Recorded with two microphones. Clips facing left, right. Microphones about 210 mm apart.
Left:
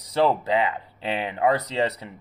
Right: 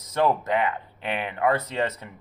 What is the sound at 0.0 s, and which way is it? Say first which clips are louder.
Speech: left 2 dB; 30° left (ahead or behind).